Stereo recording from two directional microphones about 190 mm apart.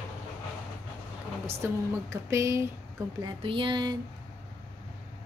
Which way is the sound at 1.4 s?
15° right (ahead or behind).